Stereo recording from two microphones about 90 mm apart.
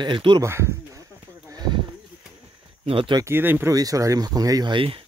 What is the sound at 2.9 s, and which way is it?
Speech, 80° right.